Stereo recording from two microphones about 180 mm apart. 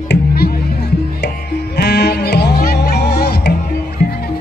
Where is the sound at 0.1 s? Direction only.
60° left (ahead or behind).